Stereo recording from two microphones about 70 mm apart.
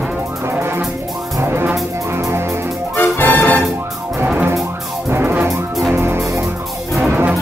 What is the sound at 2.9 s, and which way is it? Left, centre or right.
Music, left.